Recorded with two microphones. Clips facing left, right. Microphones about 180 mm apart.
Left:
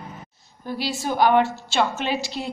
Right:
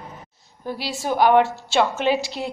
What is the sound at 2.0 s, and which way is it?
Speech, 15° right (ahead or behind).